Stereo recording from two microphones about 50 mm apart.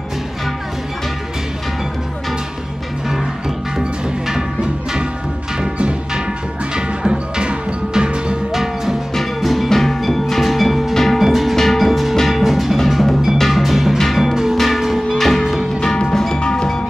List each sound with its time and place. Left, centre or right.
3.1 s music: centre
9.1 s music: centre
14.6 s church bell: centre
15.0 s music: centre
15.8 s music: centre